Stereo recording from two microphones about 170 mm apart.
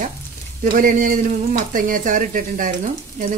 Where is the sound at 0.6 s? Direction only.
50° right (ahead or behind).